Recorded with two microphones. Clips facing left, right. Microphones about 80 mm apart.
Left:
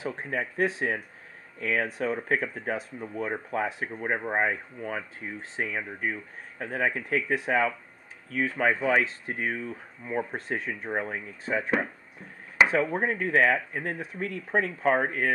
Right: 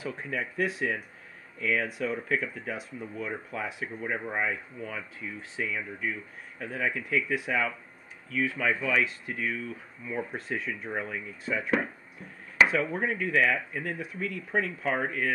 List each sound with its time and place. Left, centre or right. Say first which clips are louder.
0.0 s speech: left 2 dB; left
12.6 s chop: left 1 dB; centre
12.9 s speech: left 2 dB; left